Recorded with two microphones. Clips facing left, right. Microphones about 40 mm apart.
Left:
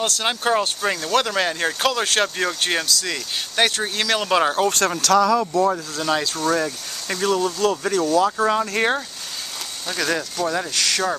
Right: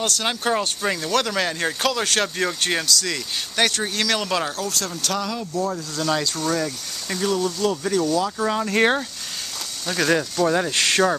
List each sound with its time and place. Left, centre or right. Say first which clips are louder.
0.0 s speech: left 1 dB; centre
4.5 s speech: left 7 dB; left
4.8 s speech: left 9 dB; left
5.5 s speech: left 3 dB; left
5.9 s speech: left 1 dB; centre
8.2 s speech: left 4 dB; centre
8.6 s speech: right 2 dB; centre
10.7 s speech: right 2 dB; right